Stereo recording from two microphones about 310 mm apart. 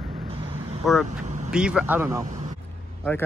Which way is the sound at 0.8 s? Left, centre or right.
Centre.